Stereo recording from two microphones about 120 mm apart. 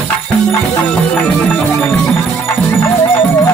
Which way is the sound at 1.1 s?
10° left (ahead or behind).